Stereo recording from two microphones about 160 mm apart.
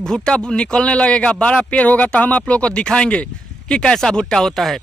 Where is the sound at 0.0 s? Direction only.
5° left (ahead or behind).